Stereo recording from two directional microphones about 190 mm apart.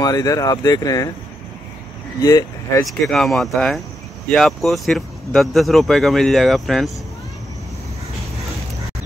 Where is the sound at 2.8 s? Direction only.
Centre (ahead or behind).